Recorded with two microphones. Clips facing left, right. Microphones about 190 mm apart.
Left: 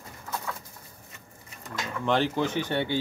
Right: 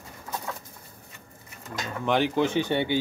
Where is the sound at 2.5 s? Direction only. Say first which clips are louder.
Right 3 dB; 20° right (ahead or behind).